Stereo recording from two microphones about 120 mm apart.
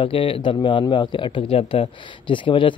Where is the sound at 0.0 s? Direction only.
45° left (ahead or behind).